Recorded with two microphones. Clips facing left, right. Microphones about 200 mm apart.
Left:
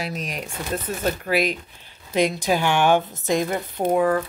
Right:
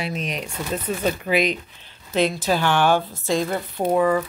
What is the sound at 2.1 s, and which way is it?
A woman's voice, 15° left (ahead or behind).